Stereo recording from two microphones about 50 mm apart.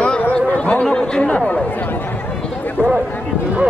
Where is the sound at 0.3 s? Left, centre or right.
Left.